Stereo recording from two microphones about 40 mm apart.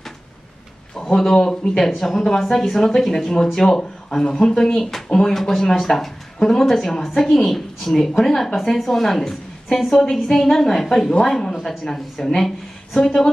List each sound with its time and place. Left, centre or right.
1.1 s speech: centre
2.0 s speech: centre
5.2 s speech: centre